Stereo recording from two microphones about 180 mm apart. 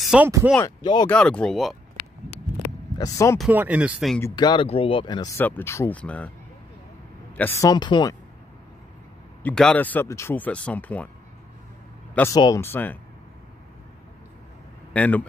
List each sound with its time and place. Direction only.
0.0 s a sound: 5° right (ahead or behind)
1.0 s speech: 5° left (ahead or behind)
3.0 s speech: 15° left (ahead or behind)
3.3 s speech: 5° right (ahead or behind)
4.2 s speech: 25° left (ahead or behind)
5.4 s speech: 15° left (ahead or behind)
7.3 s speech: 15° left (ahead or behind)
9.4 s speech: 5° left (ahead or behind)
12.2 s speech: 20° left (ahead or behind)
14.9 s speech: 10° left (ahead or behind)